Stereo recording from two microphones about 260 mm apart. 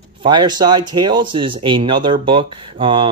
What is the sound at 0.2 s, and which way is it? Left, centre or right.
Speech, centre.